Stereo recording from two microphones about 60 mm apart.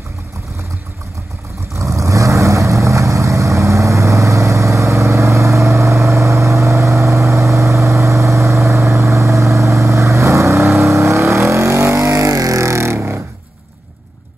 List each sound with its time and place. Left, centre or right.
1.8 s vehicle: right